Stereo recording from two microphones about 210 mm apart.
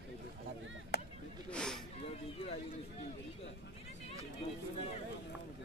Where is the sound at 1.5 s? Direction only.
5° left (ahead or behind).